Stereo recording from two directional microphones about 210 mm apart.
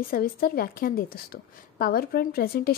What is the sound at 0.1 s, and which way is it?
A woman's voice, 45° left (ahead or behind).